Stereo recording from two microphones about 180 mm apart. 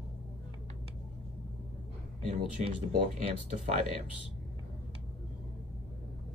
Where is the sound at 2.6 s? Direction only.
40° right (ahead or behind).